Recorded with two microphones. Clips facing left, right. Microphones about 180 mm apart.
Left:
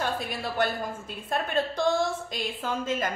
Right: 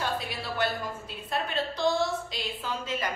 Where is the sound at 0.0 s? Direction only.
50° left (ahead or behind).